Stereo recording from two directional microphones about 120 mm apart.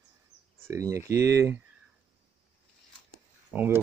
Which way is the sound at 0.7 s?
25° right (ahead or behind).